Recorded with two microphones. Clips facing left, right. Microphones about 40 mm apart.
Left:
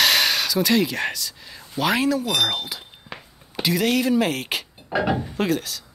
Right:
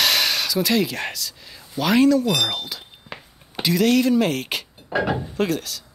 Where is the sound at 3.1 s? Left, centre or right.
Centre.